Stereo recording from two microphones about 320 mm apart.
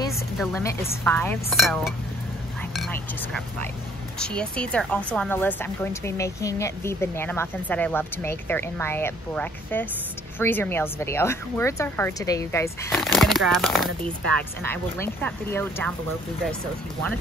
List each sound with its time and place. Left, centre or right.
0.4 s speech: centre